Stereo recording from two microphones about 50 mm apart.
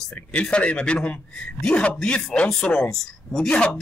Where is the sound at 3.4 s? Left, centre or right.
Left.